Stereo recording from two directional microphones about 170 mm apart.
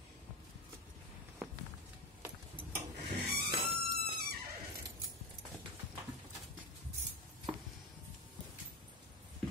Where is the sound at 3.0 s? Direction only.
75° right (ahead or behind).